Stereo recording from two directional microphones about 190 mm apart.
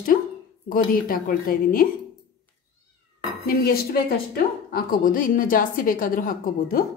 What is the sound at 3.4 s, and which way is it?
A woman's voice, 50° left (ahead or behind).